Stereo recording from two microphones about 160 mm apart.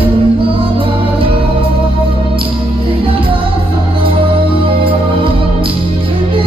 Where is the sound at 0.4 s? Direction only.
35° right (ahead or behind).